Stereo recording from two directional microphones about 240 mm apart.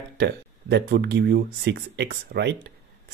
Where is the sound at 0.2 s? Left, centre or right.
Right.